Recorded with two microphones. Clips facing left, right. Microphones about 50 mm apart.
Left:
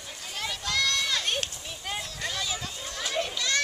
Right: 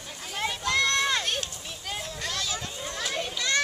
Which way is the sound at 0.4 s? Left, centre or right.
Right.